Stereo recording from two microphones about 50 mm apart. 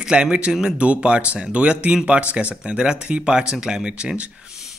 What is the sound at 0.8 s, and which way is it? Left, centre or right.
A man's voice, right.